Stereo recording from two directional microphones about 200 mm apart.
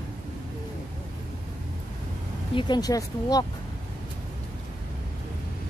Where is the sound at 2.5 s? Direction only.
20° left (ahead or behind).